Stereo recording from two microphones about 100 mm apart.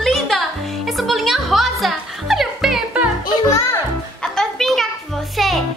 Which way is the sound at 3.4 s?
30° left (ahead or behind).